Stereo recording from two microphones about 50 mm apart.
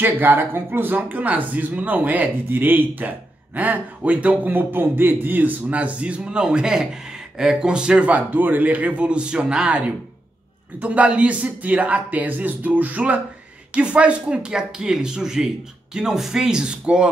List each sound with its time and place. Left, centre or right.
0.0 s speech: right; by 8.1 s centre
8.1 s speech: right; by 9.8 s centre
10.8 s speech: right